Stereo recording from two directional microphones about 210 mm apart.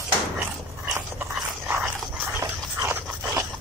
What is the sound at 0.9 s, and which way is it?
Dog, 5° right (ahead or behind).